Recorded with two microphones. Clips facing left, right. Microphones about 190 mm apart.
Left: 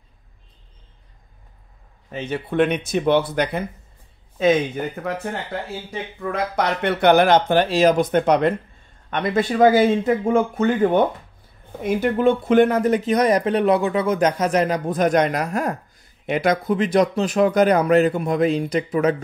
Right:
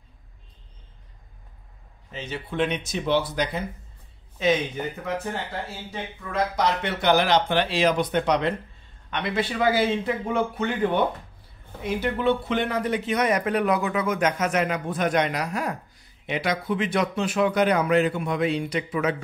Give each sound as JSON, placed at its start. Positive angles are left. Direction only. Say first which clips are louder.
{"t": 2.0, "sound": "speech", "louder": "left 7 dB", "side_deg": 55}
{"t": 6.3, "sound": "speech", "louder": "left 1 dB", "side_deg": 60}